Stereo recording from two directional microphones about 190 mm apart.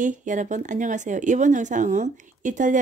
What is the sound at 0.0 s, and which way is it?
Speech, 40° right (ahead or behind).